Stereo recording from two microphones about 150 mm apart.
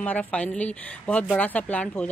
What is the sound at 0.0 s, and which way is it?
Speech, 10° left (ahead or behind).